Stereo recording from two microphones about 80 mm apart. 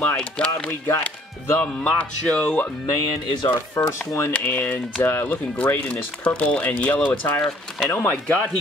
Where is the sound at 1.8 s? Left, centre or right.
Centre.